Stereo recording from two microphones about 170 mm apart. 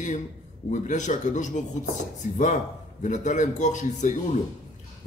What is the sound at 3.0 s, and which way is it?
Speech, 45° left (ahead or behind).